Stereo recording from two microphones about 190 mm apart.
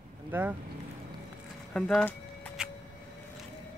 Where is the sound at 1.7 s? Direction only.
5° left (ahead or behind).